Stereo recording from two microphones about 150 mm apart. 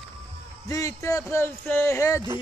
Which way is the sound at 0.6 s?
20° left (ahead or behind).